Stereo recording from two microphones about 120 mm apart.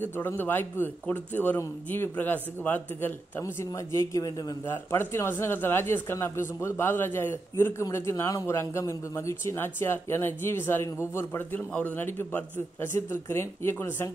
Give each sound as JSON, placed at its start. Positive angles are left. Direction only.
{"t": 0.0, "sound": "a man's voice", "side_deg": 15}